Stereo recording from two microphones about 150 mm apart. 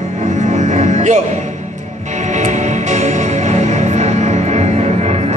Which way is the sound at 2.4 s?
50° right (ahead or behind).